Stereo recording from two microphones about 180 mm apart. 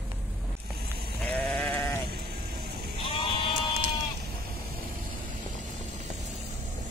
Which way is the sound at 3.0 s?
30° left (ahead or behind).